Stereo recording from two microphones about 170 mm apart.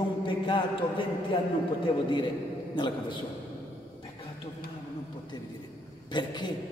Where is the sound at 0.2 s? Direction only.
30° left (ahead or behind).